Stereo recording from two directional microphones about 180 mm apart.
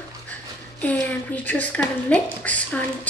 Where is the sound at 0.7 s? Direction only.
10° left (ahead or behind).